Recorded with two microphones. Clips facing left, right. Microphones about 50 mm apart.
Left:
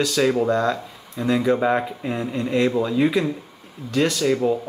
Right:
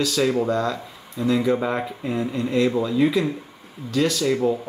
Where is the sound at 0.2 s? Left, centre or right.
Centre.